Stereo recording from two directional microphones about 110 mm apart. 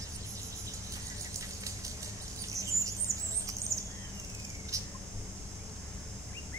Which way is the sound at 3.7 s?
30° right (ahead or behind).